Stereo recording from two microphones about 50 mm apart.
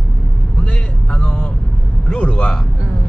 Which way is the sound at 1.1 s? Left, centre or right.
Left.